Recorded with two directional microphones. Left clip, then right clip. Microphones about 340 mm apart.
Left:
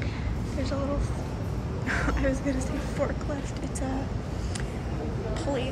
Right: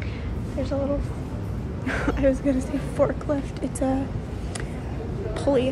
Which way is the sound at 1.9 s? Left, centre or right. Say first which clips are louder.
Right 5 dB; centre.